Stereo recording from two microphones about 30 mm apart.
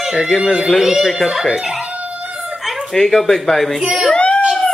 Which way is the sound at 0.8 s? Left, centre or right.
Centre.